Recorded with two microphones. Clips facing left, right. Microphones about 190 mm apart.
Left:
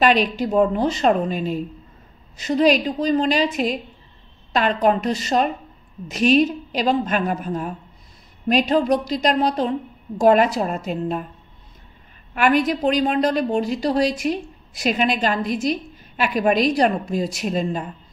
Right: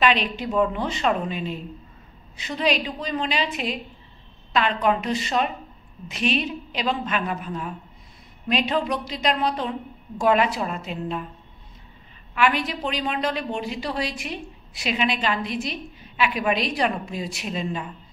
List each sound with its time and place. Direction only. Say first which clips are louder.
0.0 s a woman's voice: left 5 dB; 40° left (ahead or behind)
12.4 s a woman's voice: left 5 dB; 45° left (ahead or behind)